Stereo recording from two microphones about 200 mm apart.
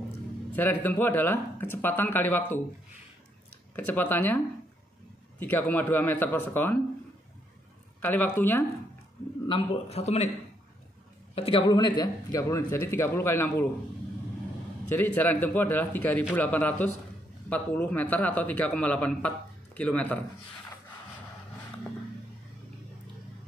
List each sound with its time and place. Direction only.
0.5 s a man's voice: 10° left (ahead or behind)
3.7 s a man's voice: 10° left (ahead or behind)
5.4 s a man's voice: 10° left (ahead or behind)
8.0 s a man's voice: 10° left (ahead or behind)
9.5 s a man's voice: 30° left (ahead or behind)
11.3 s a man's voice: 25° left (ahead or behind); by 13.7 s 10° left (ahead or behind)
14.9 s a man's voice: 10° left (ahead or behind)